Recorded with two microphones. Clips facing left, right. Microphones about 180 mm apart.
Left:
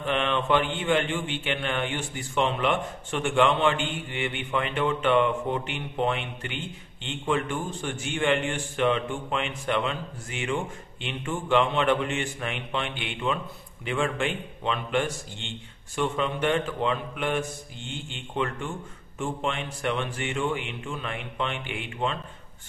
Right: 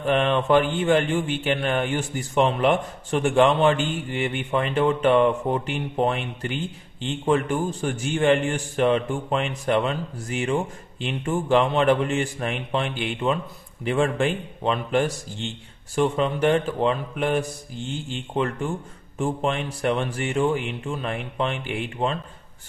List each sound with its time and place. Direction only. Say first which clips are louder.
0.0 s a man's voice: right 5 dB; 40° right (ahead or behind)